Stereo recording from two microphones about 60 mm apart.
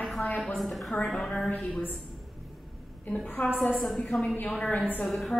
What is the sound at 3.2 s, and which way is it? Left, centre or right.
A woman's voice, centre.